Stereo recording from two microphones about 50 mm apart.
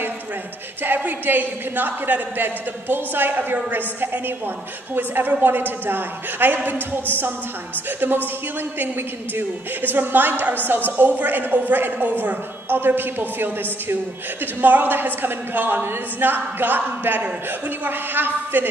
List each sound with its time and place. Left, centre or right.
0.8 s a man's voice: right
9.3 s a man's voice: right